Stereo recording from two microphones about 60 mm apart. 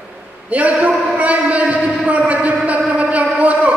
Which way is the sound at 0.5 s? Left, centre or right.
Right.